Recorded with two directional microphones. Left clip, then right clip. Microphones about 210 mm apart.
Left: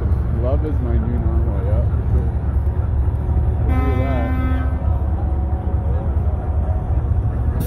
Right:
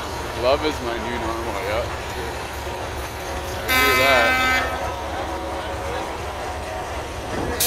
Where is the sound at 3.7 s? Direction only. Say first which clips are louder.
Right 10 dB; 30° right (ahead or behind).